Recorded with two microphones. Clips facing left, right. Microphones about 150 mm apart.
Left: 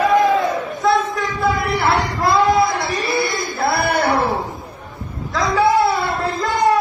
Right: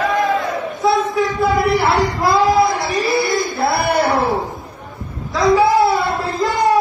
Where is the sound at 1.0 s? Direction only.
Centre (ahead or behind).